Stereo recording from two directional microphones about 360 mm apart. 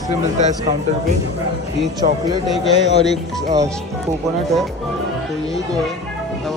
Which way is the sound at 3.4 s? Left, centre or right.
Centre.